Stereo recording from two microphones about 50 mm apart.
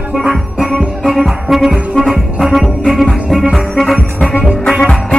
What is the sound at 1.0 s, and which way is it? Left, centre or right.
Music, centre.